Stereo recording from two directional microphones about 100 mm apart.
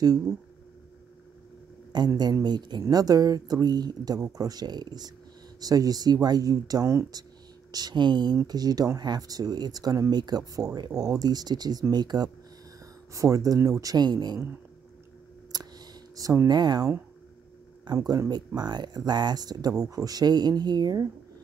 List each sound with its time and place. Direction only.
1.9 s speech: 45° right (ahead or behind)
7.7 s speech: 45° right (ahead or behind)
13.1 s speech: 35° right (ahead or behind)
15.5 s a sound: 40° right (ahead or behind)
17.9 s speech: 35° right (ahead or behind)